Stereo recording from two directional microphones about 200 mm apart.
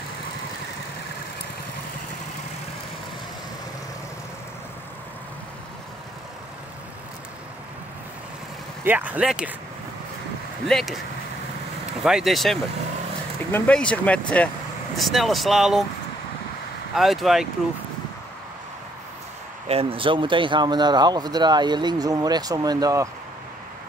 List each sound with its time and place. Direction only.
8.8 s speech: 10° right (ahead or behind)
10.7 s speech: centre (ahead or behind)
12.0 s speech: 5° right (ahead or behind)
16.9 s speech: centre (ahead or behind)
19.7 s speech: 30° right (ahead or behind)